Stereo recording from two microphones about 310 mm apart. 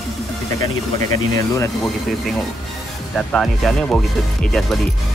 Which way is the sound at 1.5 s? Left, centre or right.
Centre.